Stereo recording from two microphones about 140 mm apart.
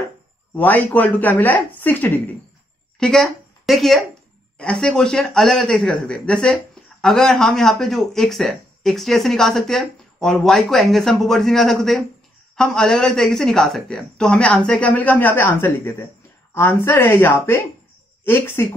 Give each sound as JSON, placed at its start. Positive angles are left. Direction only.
{"t": 0.6, "sound": "speech", "side_deg": 10}
{"t": 3.0, "sound": "speech", "side_deg": 5}